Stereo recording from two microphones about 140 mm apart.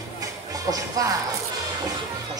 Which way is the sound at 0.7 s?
25° right (ahead or behind).